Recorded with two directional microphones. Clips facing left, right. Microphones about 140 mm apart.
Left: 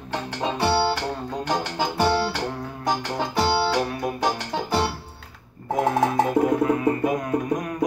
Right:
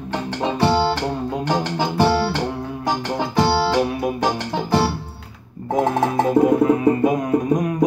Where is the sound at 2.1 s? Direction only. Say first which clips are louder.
Right 3 dB; 15° right (ahead or behind).